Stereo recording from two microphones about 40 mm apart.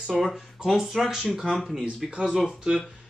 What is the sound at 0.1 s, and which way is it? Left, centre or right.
Speech, centre.